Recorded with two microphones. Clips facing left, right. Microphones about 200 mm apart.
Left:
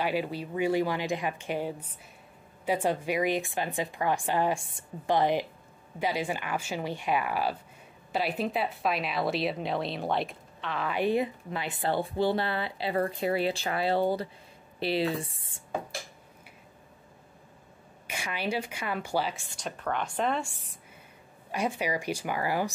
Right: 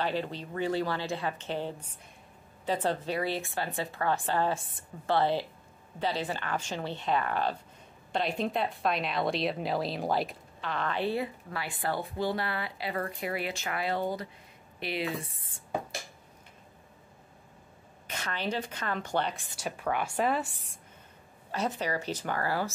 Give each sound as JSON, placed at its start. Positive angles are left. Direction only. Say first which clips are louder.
{"t": 0.0, "sound": "a woman's voice", "louder": "left 2 dB", "side_deg": 10}
{"t": 18.0, "sound": "a woman's voice", "louder": "left 1 dB", "side_deg": 10}
{"t": 19.5, "sound": "speech", "louder": "right 3 dB", "side_deg": -10}
{"t": 21.5, "sound": "a woman's voice", "louder": "left 2 dB", "side_deg": 10}